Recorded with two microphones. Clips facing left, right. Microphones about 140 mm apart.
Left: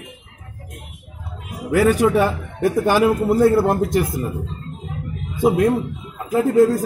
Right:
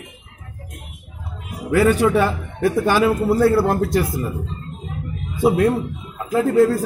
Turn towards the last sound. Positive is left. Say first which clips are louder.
# left 1 dB
turn(degrees=15)  # may be behind; listen again after turning